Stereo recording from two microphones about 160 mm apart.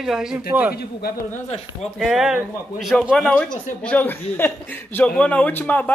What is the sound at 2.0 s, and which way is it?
A man's voice, centre (ahead or behind).